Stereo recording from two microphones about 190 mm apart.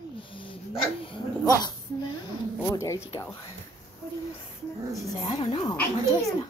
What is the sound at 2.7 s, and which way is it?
Speech, 15° left (ahead or behind).